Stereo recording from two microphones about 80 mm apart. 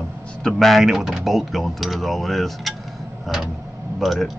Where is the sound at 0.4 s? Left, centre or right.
Centre.